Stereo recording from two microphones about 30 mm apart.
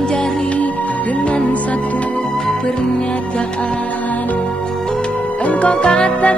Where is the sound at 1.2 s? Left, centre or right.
Left.